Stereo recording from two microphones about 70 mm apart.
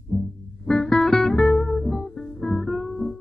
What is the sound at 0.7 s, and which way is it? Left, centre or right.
Music, centre.